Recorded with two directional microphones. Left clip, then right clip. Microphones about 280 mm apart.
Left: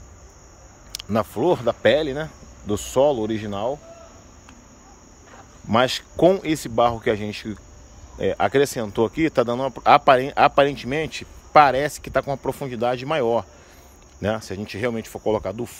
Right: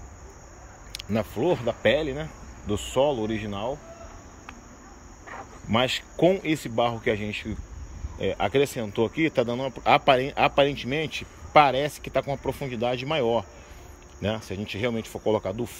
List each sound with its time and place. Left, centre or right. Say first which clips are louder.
0.9 s speech: left 5 dB; centre
5.7 s speech: left 5 dB; centre